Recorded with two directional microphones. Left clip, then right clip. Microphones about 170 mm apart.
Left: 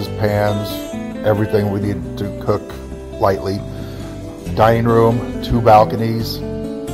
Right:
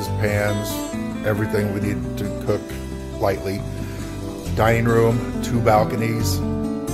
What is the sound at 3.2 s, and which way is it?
Music, 25° left (ahead or behind).